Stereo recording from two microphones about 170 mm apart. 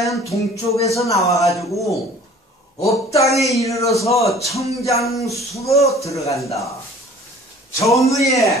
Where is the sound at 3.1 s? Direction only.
20° left (ahead or behind).